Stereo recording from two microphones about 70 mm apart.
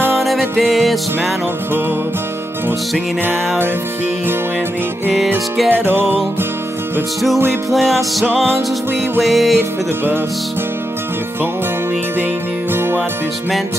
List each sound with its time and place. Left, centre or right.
0.2 s music: centre
5.7 s music: right
7.7 s music: centre
12.7 s music: right